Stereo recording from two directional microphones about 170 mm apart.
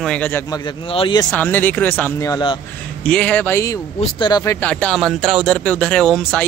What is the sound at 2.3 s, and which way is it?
Speech, 25° left (ahead or behind).